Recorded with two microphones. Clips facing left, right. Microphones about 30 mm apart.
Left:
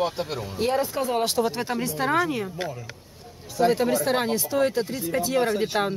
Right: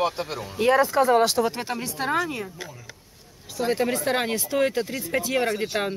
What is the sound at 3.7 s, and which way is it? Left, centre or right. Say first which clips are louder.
Speech: left 1 dB; centre.